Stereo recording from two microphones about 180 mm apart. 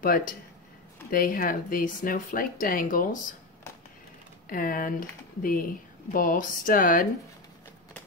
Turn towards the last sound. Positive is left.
turn(degrees=50)  # may be behind; listen again after turning